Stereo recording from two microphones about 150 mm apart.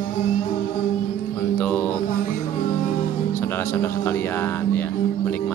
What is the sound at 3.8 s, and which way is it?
Speech, 15° left (ahead or behind).